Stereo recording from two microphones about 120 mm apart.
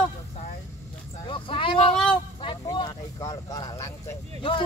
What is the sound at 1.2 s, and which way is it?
Speech, 45° left (ahead or behind).